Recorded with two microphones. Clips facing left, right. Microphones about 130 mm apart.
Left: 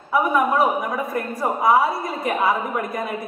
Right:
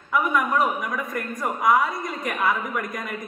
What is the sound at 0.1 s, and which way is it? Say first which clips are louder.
A woman's voice: left 4 dB; 30° left (ahead or behind).